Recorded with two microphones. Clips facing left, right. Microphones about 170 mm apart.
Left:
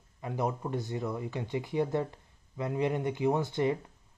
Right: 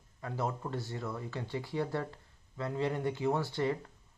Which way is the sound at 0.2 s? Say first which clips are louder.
Left 3 dB; 15° left (ahead or behind).